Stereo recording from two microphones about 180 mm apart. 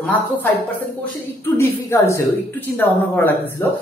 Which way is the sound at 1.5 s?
15° left (ahead or behind).